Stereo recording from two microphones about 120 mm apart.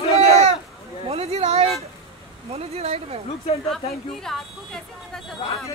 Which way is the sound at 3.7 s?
5° left (ahead or behind).